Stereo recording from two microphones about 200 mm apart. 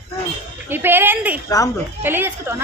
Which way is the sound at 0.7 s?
10° right (ahead or behind).